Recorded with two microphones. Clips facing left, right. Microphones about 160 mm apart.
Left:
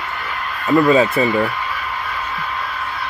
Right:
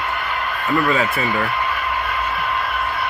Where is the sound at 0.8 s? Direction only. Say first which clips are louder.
Left 6 dB; 20° left (ahead or behind).